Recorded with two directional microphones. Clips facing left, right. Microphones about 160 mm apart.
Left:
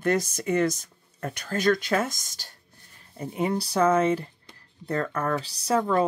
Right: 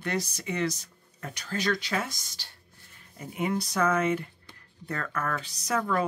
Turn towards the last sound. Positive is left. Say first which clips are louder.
# left 5 dB
turn(degrees=30)  # may be behind; listen again after turning